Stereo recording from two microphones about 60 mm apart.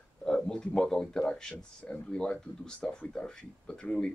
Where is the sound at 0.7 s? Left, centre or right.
Centre.